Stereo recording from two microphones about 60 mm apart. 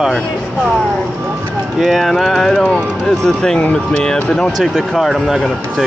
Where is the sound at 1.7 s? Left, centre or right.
Centre.